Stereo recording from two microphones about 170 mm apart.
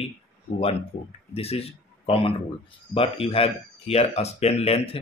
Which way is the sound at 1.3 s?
35° left (ahead or behind).